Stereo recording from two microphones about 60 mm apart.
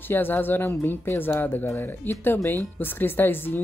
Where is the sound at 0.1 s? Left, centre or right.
Left.